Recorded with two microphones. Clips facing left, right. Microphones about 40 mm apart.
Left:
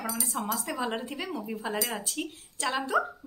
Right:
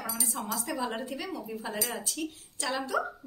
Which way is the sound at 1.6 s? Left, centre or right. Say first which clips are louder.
Left 3 dB; centre.